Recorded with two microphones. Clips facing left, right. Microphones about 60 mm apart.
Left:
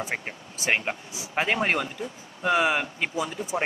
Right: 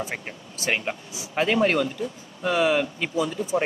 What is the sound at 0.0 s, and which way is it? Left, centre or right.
Speech, centre.